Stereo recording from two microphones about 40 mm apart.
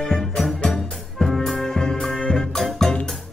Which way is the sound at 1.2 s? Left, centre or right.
Centre.